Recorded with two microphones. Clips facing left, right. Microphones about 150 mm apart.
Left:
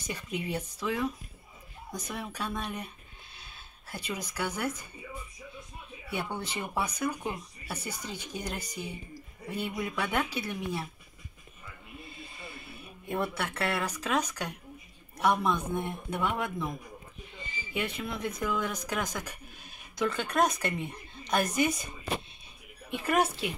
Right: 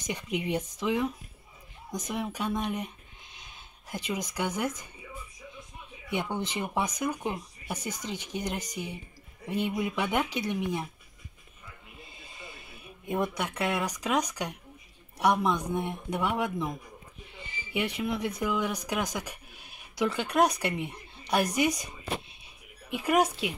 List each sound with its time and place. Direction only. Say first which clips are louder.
0.0 s speech: right 3 dB; 15° right (ahead or behind)
6.0 s speech: right 3 dB; 15° right (ahead or behind)
12.1 s a sound: left 1 dB; 20° right (ahead or behind)
15.1 s speech: right 1 dB; 15° right (ahead or behind)
17.7 s speech: right 4 dB; 15° right (ahead or behind)
22.4 s music: left 2 dB; 10° right (ahead or behind)